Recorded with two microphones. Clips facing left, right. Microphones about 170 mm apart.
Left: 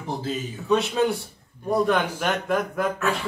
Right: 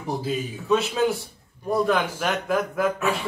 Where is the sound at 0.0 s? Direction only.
10° right (ahead or behind).